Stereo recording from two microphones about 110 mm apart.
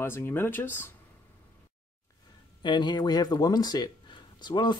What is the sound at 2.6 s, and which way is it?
Speech, 45° left (ahead or behind).